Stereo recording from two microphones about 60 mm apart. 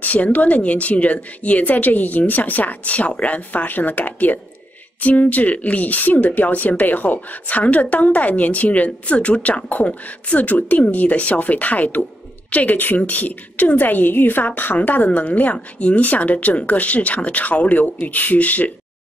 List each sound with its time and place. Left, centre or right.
0.0 s a woman's voice: left